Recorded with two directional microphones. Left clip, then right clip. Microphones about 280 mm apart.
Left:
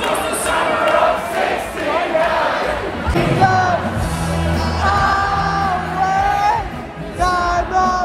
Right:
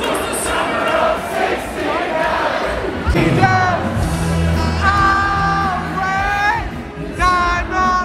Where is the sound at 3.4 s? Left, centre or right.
Centre.